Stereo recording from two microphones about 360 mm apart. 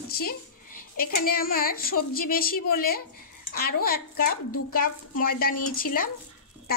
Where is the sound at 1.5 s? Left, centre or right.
Left.